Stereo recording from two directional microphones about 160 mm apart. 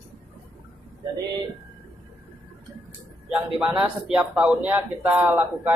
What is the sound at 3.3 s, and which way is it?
A man's voice, 10° right (ahead or behind).